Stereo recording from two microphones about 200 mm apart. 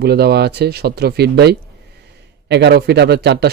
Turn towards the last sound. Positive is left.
turn(degrees=-55)  # may be behind; listen again after turning